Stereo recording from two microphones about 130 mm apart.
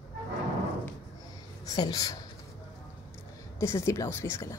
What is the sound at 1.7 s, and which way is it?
Speech, 30° left (ahead or behind).